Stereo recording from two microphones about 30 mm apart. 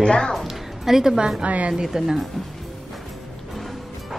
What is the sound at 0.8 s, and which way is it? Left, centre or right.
Speech, centre.